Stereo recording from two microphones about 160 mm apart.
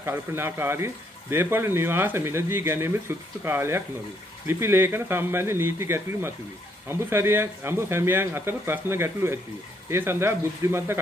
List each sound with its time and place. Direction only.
0.0 s speech: 15° right (ahead or behind)